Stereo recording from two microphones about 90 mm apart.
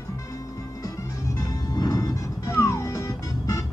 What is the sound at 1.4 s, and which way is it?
Music, 40° left (ahead or behind).